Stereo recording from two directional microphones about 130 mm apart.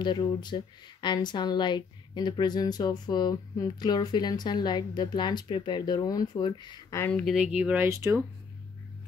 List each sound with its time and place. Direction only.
0.0 s speech: 35° left (ahead or behind)
7.1 s speech: 10° left (ahead or behind)
7.3 s speech: 10° right (ahead or behind)